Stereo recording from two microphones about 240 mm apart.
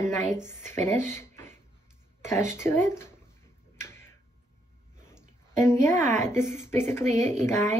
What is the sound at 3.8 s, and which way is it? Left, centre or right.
Tick-tock, centre.